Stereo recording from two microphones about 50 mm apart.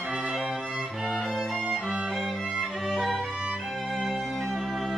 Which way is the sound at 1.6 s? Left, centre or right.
Right.